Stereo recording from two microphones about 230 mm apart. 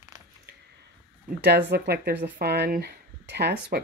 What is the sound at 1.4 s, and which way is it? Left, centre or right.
Speech, right.